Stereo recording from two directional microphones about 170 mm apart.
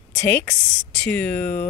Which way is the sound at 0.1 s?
10° left (ahead or behind).